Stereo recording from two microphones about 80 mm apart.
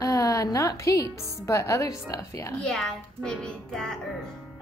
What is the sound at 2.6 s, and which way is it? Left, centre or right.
A child's voice, centre.